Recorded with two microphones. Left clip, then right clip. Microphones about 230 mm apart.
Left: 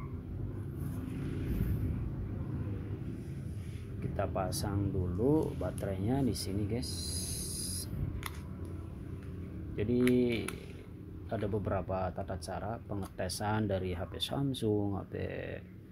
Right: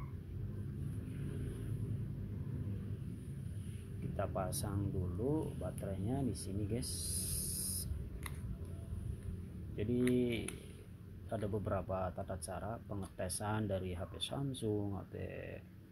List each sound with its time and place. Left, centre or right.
4.2 s speech: centre
6.7 s a sound: centre
9.8 s speech: centre